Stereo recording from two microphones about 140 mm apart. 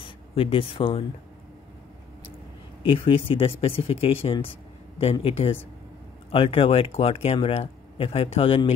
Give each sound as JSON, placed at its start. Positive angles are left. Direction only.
{"t": 0.0, "sound": "speech", "side_deg": 40}
{"t": 2.8, "sound": "speech", "side_deg": 40}